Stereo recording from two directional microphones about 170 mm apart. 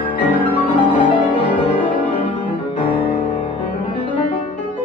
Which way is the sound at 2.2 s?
30° left (ahead or behind).